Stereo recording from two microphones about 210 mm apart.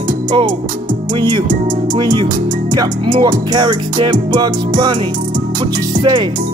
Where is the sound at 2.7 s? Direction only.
20° right (ahead or behind).